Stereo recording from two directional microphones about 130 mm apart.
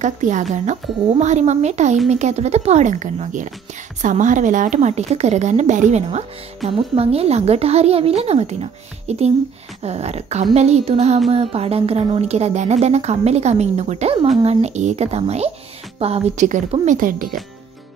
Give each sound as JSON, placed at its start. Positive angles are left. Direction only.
{"t": 0.0, "sound": "a woman's voice", "side_deg": -70}
{"t": 16.8, "sound": "a woman's voice", "side_deg": -90}